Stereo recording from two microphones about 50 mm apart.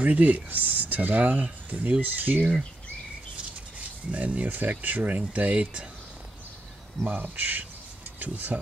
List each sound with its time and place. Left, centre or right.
0.0 s speech: right
4.1 s speech: right
7.1 s speech: right